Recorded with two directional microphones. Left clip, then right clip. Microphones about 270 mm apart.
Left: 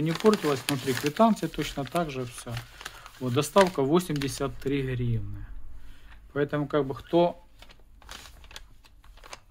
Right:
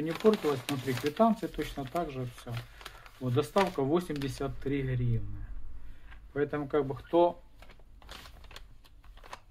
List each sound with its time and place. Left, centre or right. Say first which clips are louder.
0.2 s speech: left 3 dB; left
1.1 s speech: left 4 dB; left
6.3 s speech: left 3 dB; left
8.1 s a sound: left 4 dB; centre